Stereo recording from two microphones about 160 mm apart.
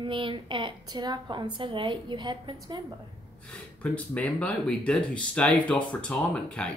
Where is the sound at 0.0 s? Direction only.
30° right (ahead or behind).